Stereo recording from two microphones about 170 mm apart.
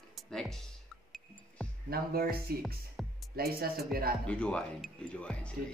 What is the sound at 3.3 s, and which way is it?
Speech, 65° right (ahead or behind).